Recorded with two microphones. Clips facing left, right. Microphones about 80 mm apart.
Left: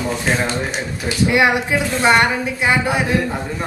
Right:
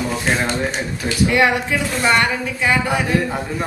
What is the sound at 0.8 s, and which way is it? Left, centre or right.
A woman's voice, centre.